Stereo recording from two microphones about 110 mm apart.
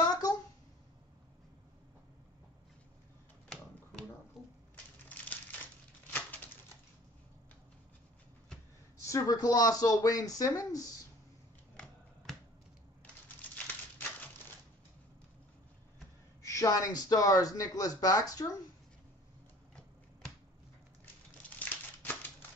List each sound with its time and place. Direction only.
0.0 s a sound: 35° left (ahead or behind)
5.1 s crushing: 15° left (ahead or behind)
6.1 s typewriter: 15° left (ahead or behind)
8.9 s speech: 30° left (ahead or behind)
16.4 s speech: 30° left (ahead or behind)
21.0 s a sound: 15° left (ahead or behind)